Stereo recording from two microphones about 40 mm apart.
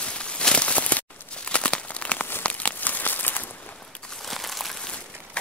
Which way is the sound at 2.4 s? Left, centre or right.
Left.